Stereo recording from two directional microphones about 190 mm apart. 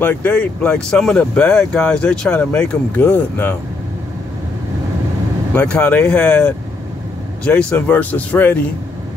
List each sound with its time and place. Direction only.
0.0 s speech: 10° left (ahead or behind)
5.5 s speech: 5° left (ahead or behind)